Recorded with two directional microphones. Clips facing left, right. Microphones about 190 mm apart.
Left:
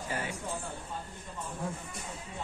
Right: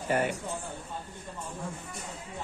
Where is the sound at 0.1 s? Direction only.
65° right (ahead or behind).